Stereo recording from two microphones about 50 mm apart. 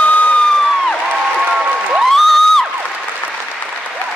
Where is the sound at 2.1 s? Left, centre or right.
Centre.